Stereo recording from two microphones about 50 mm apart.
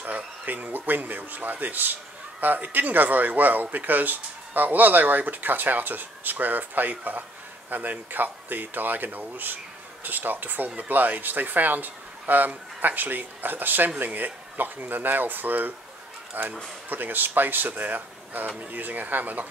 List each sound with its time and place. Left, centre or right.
0.0 s speech: right